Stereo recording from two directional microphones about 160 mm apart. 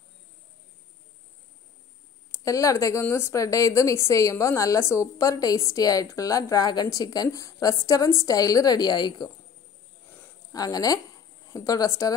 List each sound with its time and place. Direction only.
2.3 s a woman's voice: 20° left (ahead or behind)
10.5 s a woman's voice: 25° left (ahead or behind)